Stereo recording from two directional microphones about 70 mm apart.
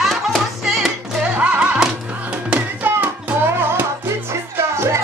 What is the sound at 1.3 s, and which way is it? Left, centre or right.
Music, right.